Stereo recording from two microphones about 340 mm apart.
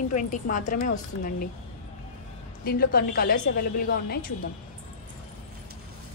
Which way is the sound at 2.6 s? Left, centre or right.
Left.